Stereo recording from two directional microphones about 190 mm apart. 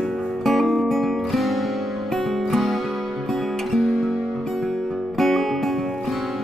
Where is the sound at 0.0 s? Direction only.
Centre (ahead or behind).